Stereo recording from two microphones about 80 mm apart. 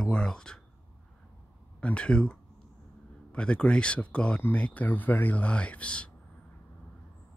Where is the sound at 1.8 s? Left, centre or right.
Centre.